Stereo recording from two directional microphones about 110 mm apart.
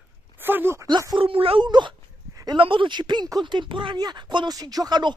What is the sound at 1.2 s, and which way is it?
Speech, 55° right (ahead or behind).